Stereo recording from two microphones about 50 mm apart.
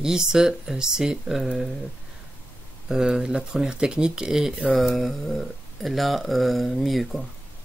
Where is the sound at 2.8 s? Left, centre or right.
Centre.